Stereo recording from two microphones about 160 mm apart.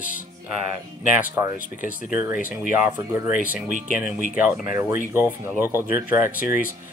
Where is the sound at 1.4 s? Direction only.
20° right (ahead or behind).